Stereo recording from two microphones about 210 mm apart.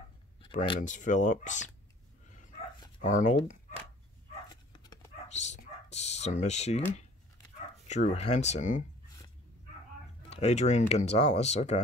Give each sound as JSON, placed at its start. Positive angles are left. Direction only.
{"t": 0.7, "sound": "speech", "side_deg": 35}
{"t": 3.0, "sound": "speech", "side_deg": 35}
{"t": 4.5, "sound": "dog", "side_deg": 20}
{"t": 5.3, "sound": "speech", "side_deg": 35}
{"t": 10.3, "sound": "speech", "side_deg": 30}